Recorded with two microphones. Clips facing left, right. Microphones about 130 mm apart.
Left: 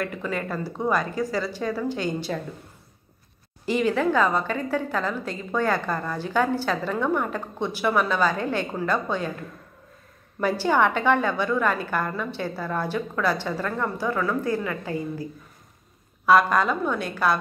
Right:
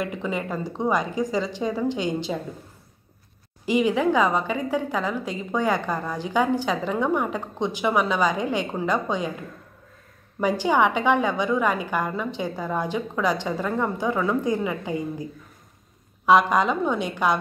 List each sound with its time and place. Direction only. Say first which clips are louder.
0.0 s a woman's voice: right 1 dB; 15° right (ahead or behind)
3.6 s a woman's voice: right 2 dB; 15° right (ahead or behind)
10.4 s a woman's voice: right 1 dB; 15° right (ahead or behind)
16.3 s a woman's voice: right 1 dB; 15° right (ahead or behind)